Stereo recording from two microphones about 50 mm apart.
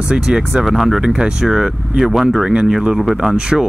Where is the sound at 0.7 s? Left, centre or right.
Centre.